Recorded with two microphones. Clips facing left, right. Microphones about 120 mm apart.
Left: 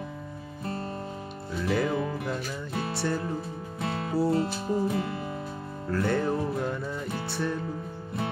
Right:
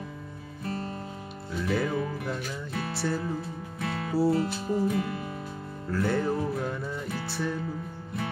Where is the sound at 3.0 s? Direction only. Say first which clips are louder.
Even; 5° right (ahead or behind).